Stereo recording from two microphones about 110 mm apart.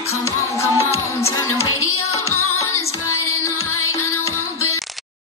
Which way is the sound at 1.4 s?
25° left (ahead or behind).